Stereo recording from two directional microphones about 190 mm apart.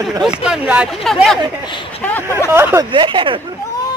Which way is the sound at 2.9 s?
25° right (ahead or behind).